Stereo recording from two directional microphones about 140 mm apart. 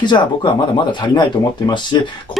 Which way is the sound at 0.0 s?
35° left (ahead or behind).